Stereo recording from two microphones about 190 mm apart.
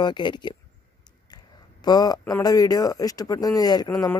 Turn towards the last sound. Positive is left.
turn(degrees=20)  # may be behind; listen again after turning